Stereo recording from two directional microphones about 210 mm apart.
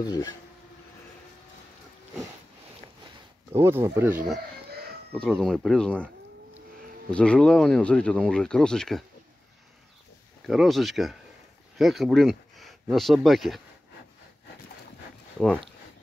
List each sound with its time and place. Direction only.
0.0 s speech: 20° left (ahead or behind)
3.5 s speech: 15° right (ahead or behind)
5.1 s speech: 5° left (ahead or behind)
7.1 s speech: 5° left (ahead or behind)
10.4 s speech: centre (ahead or behind)